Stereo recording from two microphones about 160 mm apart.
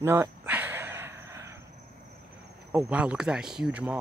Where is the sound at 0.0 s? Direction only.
15° right (ahead or behind).